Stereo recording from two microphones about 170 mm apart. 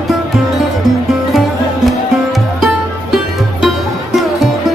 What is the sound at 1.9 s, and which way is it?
Music, centre (ahead or behind).